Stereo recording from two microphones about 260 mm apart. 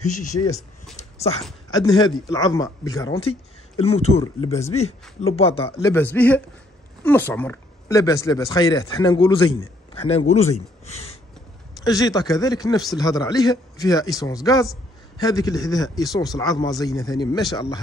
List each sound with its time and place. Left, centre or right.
0.9 s dog: left
1.7 s speech: centre